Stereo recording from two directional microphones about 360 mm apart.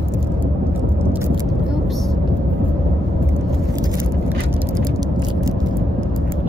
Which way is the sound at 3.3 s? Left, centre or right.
Centre.